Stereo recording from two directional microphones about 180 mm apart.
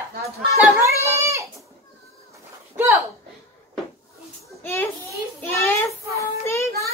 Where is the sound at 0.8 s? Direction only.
15° right (ahead or behind).